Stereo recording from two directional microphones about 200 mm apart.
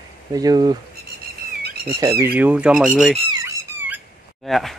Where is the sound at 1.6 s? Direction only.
50° right (ahead or behind).